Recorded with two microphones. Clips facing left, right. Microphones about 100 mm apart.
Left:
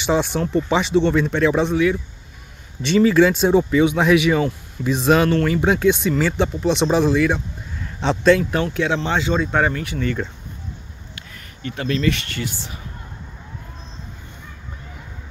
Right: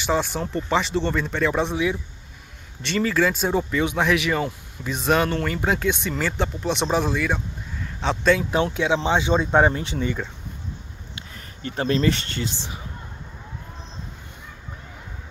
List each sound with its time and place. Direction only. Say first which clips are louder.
0.0 s speech: left 4 dB; centre (ahead or behind)
2.9 s speech: left 7 dB; 5° left (ahead or behind)
3.8 s speech: left 6 dB; 5° left (ahead or behind)
8.7 s speech: even; 15° right (ahead or behind)
11.1 s speech: right 1 dB; 30° right (ahead or behind)